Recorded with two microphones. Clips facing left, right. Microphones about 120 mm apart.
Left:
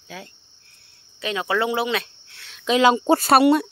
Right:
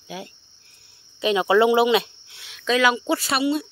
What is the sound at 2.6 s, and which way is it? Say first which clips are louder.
Speech: left 3 dB; 25° left (ahead or behind).